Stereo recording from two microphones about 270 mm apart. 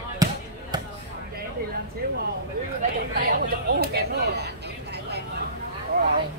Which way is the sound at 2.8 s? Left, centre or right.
Right.